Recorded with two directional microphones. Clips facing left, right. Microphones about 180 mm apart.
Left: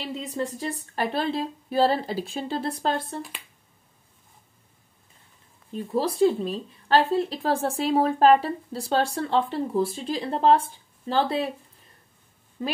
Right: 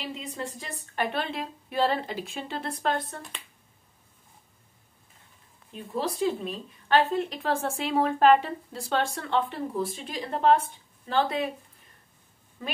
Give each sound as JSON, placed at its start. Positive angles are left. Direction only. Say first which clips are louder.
{"t": 0.1, "sound": "speech", "louder": "left 6 dB", "side_deg": 40}
{"t": 5.7, "sound": "speech", "louder": "left 5 dB", "side_deg": 35}